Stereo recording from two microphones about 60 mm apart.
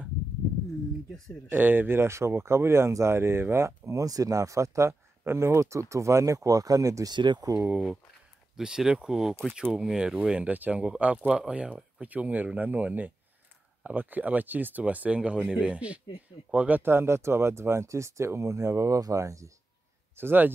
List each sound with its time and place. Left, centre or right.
1.5 s speech: right
4.0 s speech: right
8.5 s speech: centre
16.8 s speech: right
20.2 s speech: right